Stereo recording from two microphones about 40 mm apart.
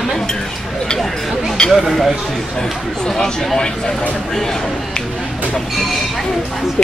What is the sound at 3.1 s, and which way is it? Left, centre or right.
Speech, centre.